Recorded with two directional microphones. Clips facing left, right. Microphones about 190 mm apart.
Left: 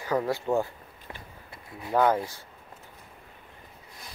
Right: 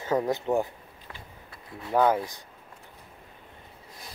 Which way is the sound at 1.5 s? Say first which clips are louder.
Even; 20° left (ahead or behind).